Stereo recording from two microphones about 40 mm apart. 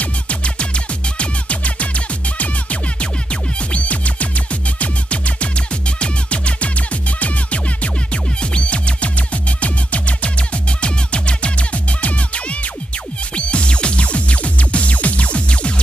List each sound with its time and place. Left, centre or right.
0.0 s music: left